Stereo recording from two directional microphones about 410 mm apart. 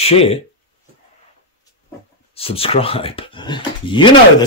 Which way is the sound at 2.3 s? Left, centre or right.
Centre.